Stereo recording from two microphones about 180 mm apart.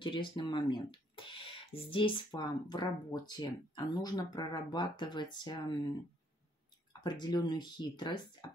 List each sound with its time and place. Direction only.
0.0 s speech: 25° left (ahead or behind)
6.9 s speech: 25° left (ahead or behind)